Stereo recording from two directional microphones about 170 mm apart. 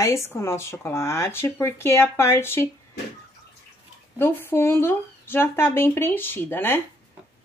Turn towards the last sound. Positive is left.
turn(degrees=10)  # may be behind; listen again after turning